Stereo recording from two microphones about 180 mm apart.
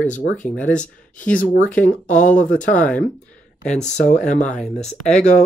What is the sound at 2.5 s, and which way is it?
Speech, 5° left (ahead or behind).